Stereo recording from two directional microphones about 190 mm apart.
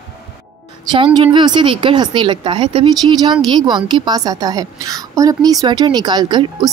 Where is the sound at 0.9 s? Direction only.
25° right (ahead or behind).